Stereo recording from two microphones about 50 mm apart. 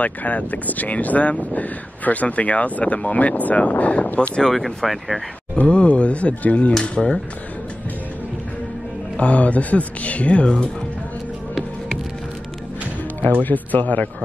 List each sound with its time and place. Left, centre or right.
0.0 s speech: left
4.4 s speech: centre
5.7 s speech: left
9.1 s speech: left
13.4 s speech: left